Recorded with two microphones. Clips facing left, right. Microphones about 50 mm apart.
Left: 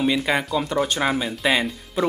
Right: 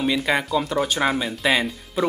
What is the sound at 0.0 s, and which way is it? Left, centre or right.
Speech, centre.